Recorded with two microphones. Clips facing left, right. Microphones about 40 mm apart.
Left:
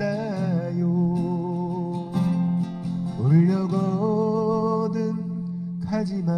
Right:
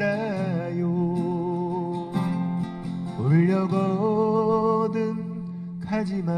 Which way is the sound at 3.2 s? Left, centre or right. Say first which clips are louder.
Even; right.